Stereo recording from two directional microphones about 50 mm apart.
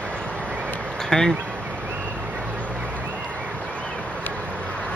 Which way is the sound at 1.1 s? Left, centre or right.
Centre.